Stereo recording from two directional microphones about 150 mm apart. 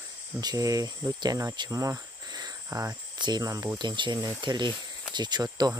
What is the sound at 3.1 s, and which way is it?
Speech, 30° right (ahead or behind).